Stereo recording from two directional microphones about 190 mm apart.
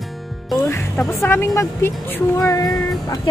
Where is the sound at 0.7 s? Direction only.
10° left (ahead or behind).